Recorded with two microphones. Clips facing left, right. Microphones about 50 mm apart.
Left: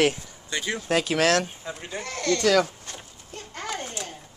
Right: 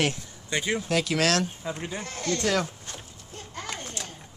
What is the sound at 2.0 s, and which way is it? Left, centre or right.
Speech, left.